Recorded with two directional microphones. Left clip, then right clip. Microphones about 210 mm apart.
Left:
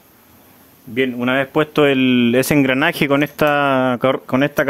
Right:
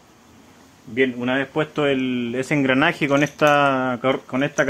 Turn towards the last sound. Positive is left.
turn(degrees=55)  # may be behind; listen again after turning